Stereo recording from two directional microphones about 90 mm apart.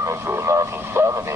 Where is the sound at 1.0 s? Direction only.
25° right (ahead or behind).